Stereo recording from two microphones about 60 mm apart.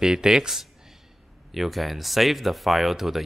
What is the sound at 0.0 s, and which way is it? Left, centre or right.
A man's voice, centre.